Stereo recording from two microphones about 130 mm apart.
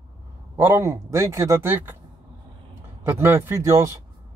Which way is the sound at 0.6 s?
20° right (ahead or behind).